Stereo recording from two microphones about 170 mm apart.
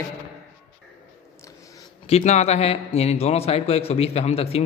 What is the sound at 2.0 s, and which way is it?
A man's voice, 40° left (ahead or behind).